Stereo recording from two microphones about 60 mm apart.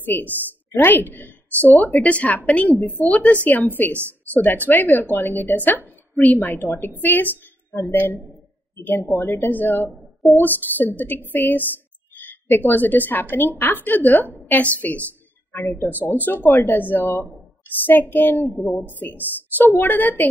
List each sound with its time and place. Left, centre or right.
0.0 s a woman's voice: left
9.5 s a woman's voice: left
15.5 s a woman's voice: left